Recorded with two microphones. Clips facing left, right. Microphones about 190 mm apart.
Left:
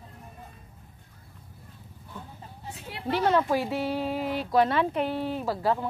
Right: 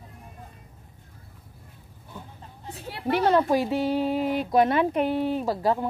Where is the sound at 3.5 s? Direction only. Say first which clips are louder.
Right 4 dB; 15° right (ahead or behind).